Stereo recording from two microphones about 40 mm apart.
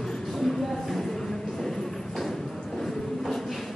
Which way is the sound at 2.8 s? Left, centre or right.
Centre.